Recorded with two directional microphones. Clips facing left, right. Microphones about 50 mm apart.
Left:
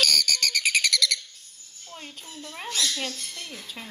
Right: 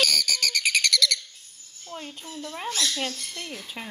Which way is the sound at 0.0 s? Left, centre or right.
Centre.